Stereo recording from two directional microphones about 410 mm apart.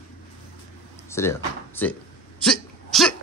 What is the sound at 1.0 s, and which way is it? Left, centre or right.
Drawer open or close, centre.